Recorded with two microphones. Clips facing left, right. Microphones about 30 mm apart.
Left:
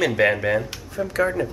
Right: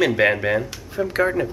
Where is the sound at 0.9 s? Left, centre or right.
Centre.